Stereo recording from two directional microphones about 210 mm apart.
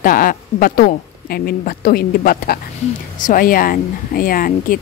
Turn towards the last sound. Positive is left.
turn(degrees=45)  # may be behind; listen again after turning